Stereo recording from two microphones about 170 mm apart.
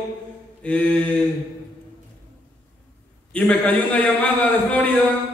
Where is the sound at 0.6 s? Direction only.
5° left (ahead or behind).